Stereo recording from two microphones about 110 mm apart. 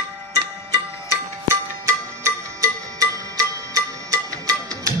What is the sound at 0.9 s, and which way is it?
Music, 25° left (ahead or behind).